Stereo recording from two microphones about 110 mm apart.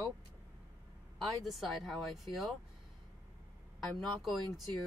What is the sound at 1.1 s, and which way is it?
Speech, centre (ahead or behind).